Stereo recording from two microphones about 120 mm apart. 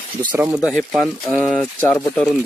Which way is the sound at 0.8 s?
Centre (ahead or behind).